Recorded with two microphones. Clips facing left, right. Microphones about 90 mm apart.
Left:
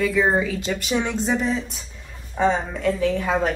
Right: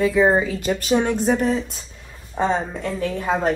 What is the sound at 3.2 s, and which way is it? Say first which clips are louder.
Speech: right 1 dB; 30° right (ahead or behind).